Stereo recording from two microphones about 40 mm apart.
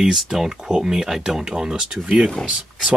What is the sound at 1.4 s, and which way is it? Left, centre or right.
Speech, right.